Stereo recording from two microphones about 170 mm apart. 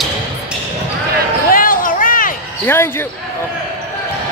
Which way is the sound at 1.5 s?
55° left (ahead or behind).